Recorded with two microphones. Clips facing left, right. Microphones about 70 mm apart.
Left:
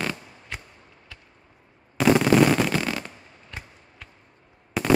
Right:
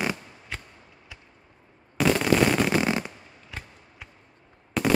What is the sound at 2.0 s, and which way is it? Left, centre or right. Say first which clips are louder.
Explosion: left 4 dB; centre.